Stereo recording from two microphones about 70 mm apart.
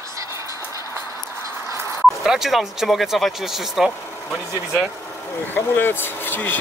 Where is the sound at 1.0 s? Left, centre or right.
Left.